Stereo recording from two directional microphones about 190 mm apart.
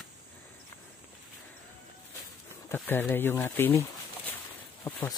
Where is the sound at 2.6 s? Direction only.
10° left (ahead or behind).